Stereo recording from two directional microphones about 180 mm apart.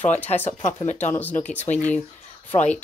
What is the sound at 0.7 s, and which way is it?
Speech, 40° left (ahead or behind).